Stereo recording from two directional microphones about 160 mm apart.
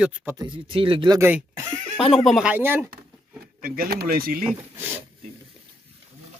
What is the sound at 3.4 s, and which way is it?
Speech, 65° right (ahead or behind).